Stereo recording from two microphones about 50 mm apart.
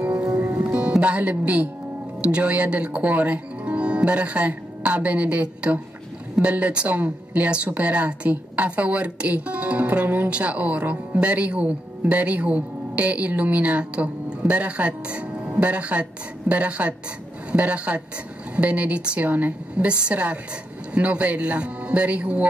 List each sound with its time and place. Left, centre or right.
0.0 s music: right
0.7 s music: right
1.3 s a woman's voice: right